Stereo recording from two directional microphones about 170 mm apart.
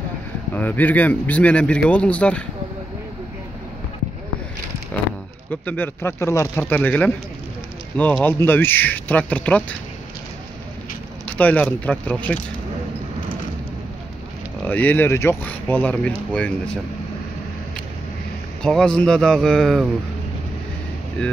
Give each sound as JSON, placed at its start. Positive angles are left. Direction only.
{"t": 0.6, "sound": "speech", "side_deg": 10}
{"t": 5.5, "sound": "speech", "side_deg": 10}
{"t": 11.2, "sound": "speech", "side_deg": 10}
{"t": 14.6, "sound": "speech", "side_deg": 10}
{"t": 18.6, "sound": "a man's voice", "side_deg": 5}